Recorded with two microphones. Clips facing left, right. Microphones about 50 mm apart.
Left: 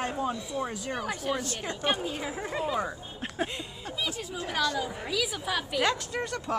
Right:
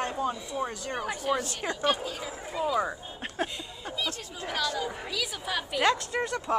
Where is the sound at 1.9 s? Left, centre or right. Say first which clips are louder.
Left 1 dB; left.